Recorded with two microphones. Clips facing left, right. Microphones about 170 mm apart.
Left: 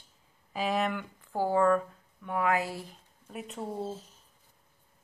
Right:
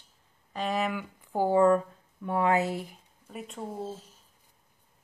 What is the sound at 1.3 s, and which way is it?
Speech, 20° right (ahead or behind).